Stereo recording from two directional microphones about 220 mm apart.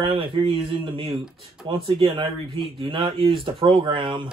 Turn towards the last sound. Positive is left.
turn(degrees=-20)  # may be behind; listen again after turning